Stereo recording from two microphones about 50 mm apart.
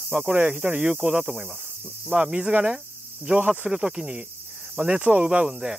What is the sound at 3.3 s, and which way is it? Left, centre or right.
Speech, right.